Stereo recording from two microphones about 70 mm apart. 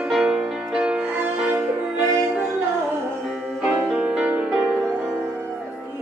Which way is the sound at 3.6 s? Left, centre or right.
Centre.